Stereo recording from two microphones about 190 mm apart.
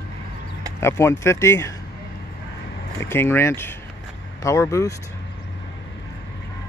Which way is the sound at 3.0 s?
15° left (ahead or behind).